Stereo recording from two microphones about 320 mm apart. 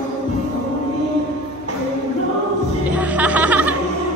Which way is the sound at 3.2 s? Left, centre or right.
Centre.